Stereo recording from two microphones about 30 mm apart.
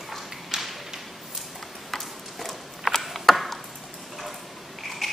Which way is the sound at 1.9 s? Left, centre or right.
Centre.